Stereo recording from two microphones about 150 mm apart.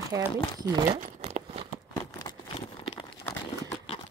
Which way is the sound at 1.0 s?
50° right (ahead or behind).